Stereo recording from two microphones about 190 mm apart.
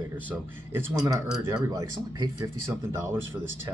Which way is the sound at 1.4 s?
20° right (ahead or behind).